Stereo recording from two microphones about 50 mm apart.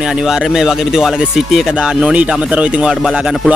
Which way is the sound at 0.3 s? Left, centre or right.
Centre.